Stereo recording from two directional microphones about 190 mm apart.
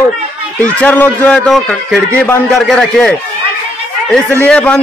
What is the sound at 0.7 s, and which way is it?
Speech, 10° left (ahead or behind).